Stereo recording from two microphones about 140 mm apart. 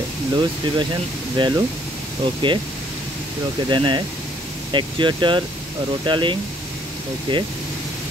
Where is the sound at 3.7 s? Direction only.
35° right (ahead or behind).